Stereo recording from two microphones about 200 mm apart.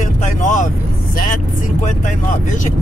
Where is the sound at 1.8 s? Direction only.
40° left (ahead or behind).